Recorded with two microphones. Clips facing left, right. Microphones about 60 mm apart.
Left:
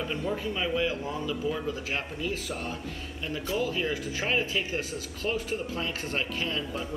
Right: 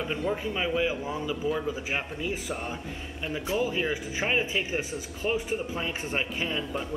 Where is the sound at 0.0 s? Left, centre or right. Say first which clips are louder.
Right 2 dB; centre.